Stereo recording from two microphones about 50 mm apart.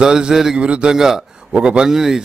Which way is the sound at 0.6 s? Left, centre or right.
Right.